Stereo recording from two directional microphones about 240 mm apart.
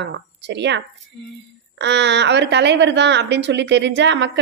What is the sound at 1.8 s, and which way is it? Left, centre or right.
A woman's voice, right.